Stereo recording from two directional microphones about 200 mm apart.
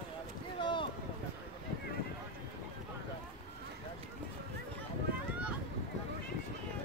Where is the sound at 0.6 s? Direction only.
25° left (ahead or behind).